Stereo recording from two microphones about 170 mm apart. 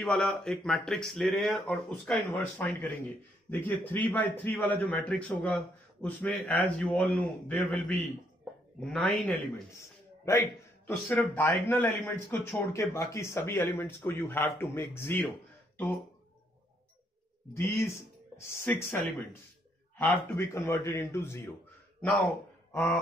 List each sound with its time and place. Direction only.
0.0 s a man's voice: 5° left (ahead or behind)
17.6 s a man's voice: 15° left (ahead or behind)